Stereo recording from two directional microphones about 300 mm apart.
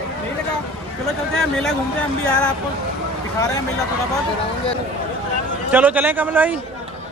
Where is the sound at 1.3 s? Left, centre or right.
Centre.